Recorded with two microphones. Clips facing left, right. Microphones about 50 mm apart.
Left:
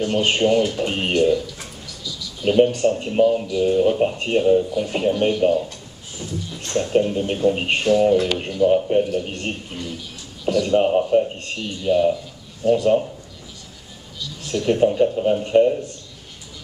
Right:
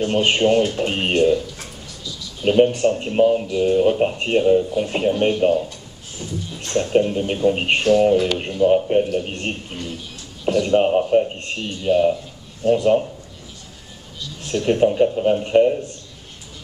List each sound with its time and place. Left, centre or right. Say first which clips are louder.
0.0 s speech: right 1 dB; right
7.0 s speech: even; centre
14.5 s speech: right 1 dB; centre